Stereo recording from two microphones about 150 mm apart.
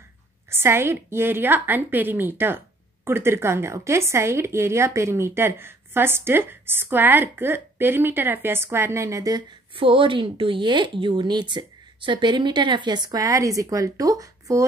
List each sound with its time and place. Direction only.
0.5 s speech: 15° right (ahead or behind)
9.8 s speech: 35° right (ahead or behind)